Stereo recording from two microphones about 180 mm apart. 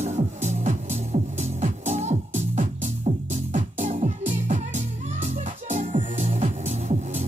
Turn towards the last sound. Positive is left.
turn(degrees=-40)  # may be behind; listen again after turning